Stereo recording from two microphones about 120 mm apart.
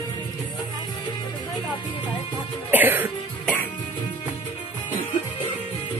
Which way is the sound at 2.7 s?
15° right (ahead or behind).